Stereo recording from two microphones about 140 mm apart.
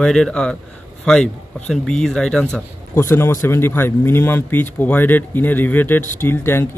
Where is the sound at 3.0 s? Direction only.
20° left (ahead or behind).